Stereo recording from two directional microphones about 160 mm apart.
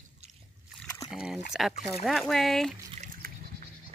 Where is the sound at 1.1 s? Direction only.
5° right (ahead or behind).